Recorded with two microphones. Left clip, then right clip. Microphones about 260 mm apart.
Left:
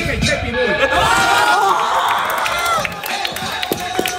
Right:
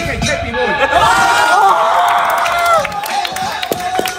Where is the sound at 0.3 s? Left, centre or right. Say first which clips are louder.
Right 2 dB; centre.